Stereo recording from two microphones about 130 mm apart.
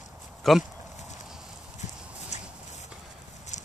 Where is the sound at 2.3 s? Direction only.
60° left (ahead or behind).